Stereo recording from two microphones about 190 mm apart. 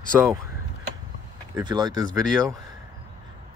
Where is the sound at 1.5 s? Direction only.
20° right (ahead or behind).